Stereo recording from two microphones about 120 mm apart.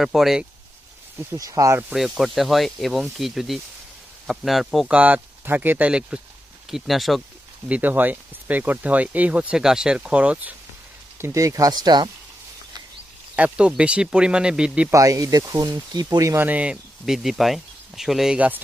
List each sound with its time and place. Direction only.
0.0 s speech: centre (ahead or behind)
1.3 s speech: 30° right (ahead or behind)
1.9 s speech: 5° right (ahead or behind)
4.9 s speech: 15° right (ahead or behind)
7.6 s speech: 10° right (ahead or behind)
11.1 s speech: 25° right (ahead or behind)
13.4 s speech: 10° right (ahead or behind)
14.9 s speech: 30° right (ahead or behind)
16.4 s speech: 10° right (ahead or behind)